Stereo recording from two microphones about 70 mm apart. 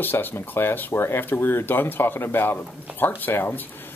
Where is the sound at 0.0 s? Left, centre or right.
Left.